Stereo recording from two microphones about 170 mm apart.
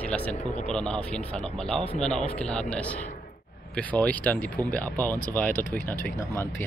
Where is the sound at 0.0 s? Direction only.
10° left (ahead or behind).